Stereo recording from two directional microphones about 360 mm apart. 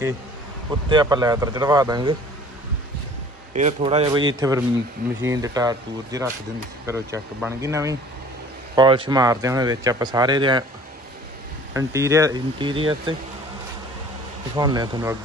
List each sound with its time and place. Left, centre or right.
0.8 s speech: centre
3.5 s speech: centre
11.7 s speech: centre
14.5 s speech: centre